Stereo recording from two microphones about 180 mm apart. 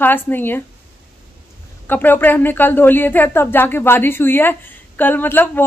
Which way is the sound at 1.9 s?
10° left (ahead or behind).